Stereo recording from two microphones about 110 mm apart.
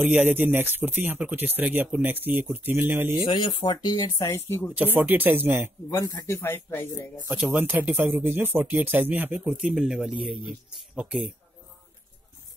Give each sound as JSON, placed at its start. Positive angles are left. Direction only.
{"t": 0.0, "sound": "speech", "side_deg": -15}
{"t": 3.3, "sound": "speech", "side_deg": 50}
{"t": 4.3, "sound": "speech", "side_deg": 20}
{"t": 4.7, "sound": "speech", "side_deg": -15}
{"t": 5.9, "sound": "speech", "side_deg": 35}
{"t": 7.2, "sound": "speech", "side_deg": -15}
{"t": 9.4, "sound": "speech", "side_deg": -5}